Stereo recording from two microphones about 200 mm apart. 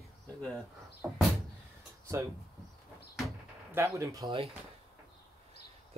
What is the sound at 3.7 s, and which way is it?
Speech, 15° right (ahead or behind).